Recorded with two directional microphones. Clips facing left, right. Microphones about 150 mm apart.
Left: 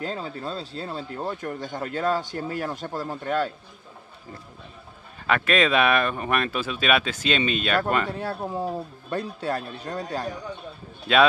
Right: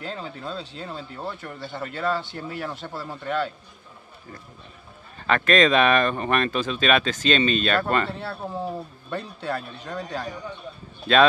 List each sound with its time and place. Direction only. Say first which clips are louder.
0.0 s speech: left 3 dB; 40° left (ahead or behind)
5.2 s speech: right 2 dB; 10° left (ahead or behind)
9.1 s speech: left 2 dB; 40° left (ahead or behind)
11.1 s speech: right 1 dB; 10° left (ahead or behind)